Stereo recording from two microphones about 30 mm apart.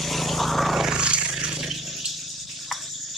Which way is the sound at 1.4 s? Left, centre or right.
Right.